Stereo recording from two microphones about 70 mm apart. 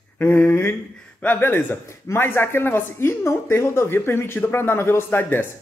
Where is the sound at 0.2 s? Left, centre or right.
Left.